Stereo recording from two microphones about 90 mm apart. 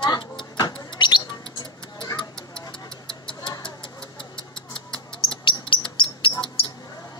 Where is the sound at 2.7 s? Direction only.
65° left (ahead or behind).